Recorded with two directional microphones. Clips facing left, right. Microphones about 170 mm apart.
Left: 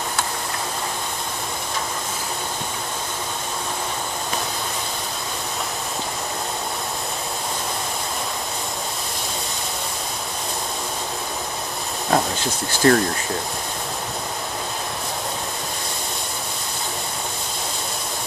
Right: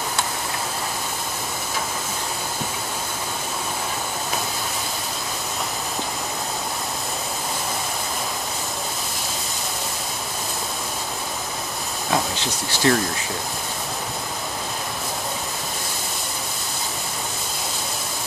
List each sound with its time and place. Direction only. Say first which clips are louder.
12.1 s bee: left 3 dB; 45° left (ahead or behind)